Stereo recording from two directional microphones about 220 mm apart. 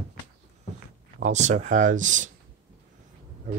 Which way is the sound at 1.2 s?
30° right (ahead or behind).